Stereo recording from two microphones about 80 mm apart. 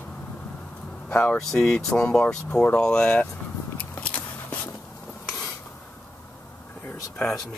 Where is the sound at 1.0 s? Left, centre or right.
Centre.